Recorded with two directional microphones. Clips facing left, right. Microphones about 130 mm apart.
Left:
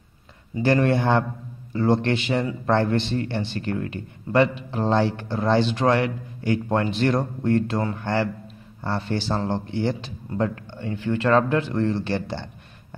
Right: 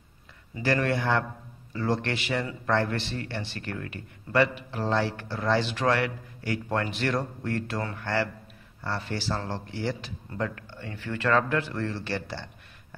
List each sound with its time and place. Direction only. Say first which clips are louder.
0.6 s speech: left 6 dB; 25° left (ahead or behind)